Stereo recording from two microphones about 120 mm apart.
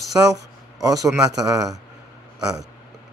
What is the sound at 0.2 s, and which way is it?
Speech, 20° right (ahead or behind).